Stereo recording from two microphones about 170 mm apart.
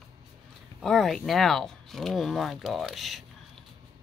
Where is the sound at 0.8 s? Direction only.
Centre (ahead or behind).